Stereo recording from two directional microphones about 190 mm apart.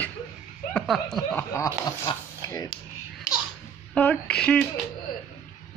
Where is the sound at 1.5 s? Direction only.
20° left (ahead or behind).